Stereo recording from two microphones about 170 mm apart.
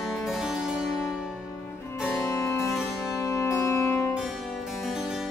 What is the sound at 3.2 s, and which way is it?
Music, 15° left (ahead or behind).